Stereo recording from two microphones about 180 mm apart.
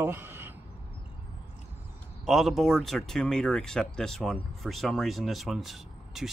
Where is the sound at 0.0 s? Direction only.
10° right (ahead or behind).